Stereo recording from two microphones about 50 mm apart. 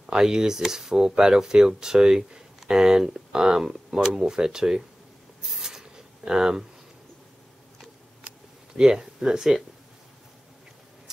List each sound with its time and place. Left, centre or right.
0.0 s speech: centre
5.4 s writing: centre
8.7 s speech: centre